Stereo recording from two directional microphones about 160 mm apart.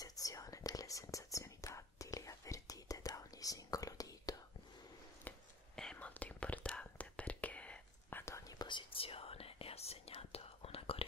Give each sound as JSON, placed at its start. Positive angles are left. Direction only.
{"t": 0.0, "sound": "whispering", "side_deg": 20}
{"t": 5.3, "sound": "whispering", "side_deg": 10}